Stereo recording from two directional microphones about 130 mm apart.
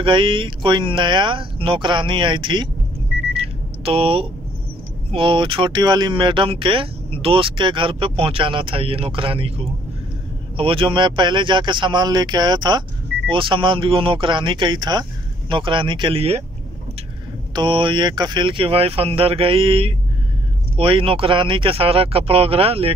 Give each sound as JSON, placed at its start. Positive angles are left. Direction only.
{"t": 0.0, "sound": "speech", "side_deg": -40}
{"t": 3.3, "sound": "a sound", "side_deg": -45}
{"t": 5.1, "sound": "speech", "side_deg": -40}
{"t": 17.6, "sound": "speech", "side_deg": -40}